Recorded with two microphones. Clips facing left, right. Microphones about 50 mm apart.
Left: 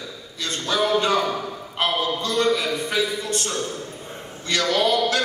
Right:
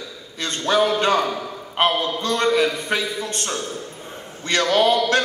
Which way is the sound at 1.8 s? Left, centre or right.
Right.